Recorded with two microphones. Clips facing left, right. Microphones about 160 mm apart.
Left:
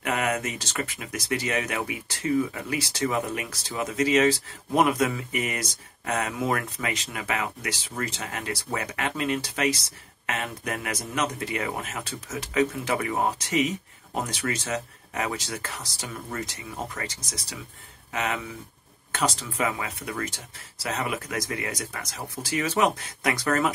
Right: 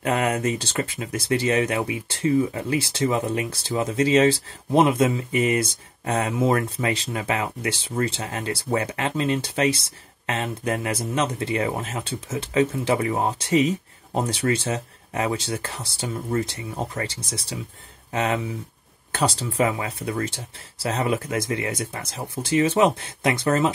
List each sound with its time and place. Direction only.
0.0 s speech: 30° right (ahead or behind)